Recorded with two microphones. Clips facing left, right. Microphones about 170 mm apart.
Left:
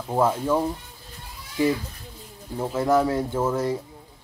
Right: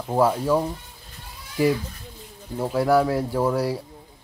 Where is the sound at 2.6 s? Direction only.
5° right (ahead or behind).